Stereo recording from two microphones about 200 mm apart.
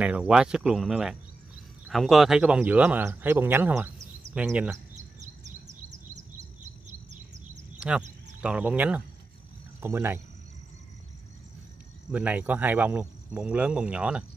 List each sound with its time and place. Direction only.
0.0 s speech: 5° right (ahead or behind)
5.9 s chirp: 35° right (ahead or behind)
7.8 s speech: 5° right (ahead or behind)
12.1 s speech: 5° right (ahead or behind)